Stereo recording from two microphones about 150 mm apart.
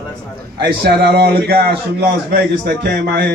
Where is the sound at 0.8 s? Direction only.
90° right.